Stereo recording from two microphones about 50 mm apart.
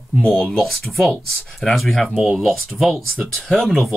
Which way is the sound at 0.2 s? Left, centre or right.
Left.